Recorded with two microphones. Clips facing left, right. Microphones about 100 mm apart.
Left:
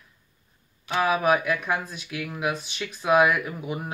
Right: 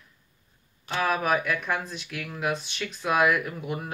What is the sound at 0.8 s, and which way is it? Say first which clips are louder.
Speech: left 4 dB; 10° left (ahead or behind).